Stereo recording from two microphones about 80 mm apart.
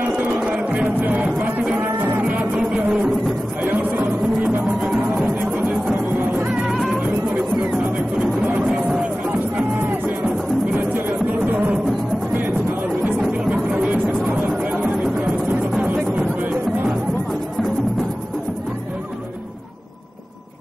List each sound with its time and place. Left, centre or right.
0.5 s music: centre
3.6 s music: right
6.3 s music: right
6.7 s music: centre
8.2 s music: centre
9.6 s music: centre
13.0 s music: centre